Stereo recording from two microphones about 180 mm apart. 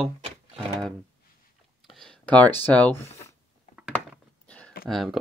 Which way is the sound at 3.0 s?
35° left (ahead or behind).